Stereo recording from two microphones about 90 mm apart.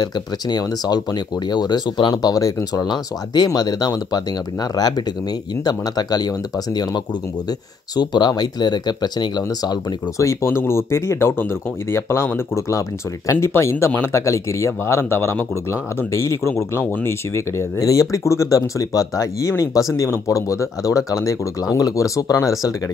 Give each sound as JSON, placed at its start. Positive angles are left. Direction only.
{"t": 0.0, "sound": "speech", "side_deg": 50}
{"t": 10.1, "sound": "speech", "side_deg": 30}